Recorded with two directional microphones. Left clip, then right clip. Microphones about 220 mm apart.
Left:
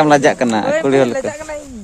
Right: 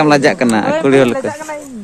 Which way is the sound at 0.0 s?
15° left (ahead or behind).